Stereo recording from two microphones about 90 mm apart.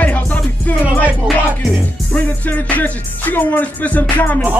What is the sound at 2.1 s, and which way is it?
Music, 15° left (ahead or behind).